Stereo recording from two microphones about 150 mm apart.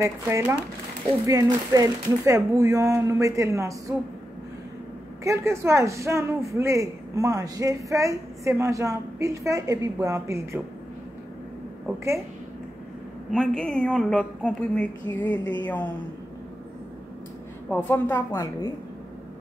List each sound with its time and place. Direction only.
0.0 s speech: 20° right (ahead or behind)
5.2 s speech: 20° right (ahead or behind)
13.3 s speech: 5° left (ahead or behind)
17.6 s speech: 10° left (ahead or behind)